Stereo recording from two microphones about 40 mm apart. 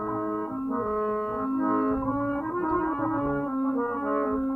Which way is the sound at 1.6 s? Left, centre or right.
Centre.